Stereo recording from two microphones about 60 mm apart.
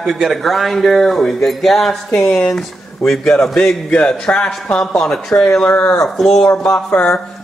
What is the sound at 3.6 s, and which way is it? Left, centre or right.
A man's voice, centre.